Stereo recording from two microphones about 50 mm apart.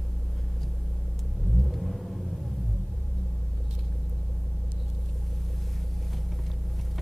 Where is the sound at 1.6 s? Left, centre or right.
Centre.